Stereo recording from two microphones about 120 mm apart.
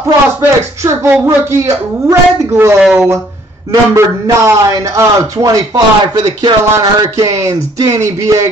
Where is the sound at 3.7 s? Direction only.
25° right (ahead or behind).